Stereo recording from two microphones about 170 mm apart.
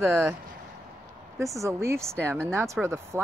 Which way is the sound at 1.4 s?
20° right (ahead or behind).